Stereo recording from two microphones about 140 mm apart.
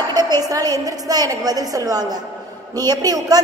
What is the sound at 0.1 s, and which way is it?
A woman's voice, 30° right (ahead or behind).